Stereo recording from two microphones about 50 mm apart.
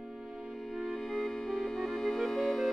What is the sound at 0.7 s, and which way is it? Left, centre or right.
Music, centre.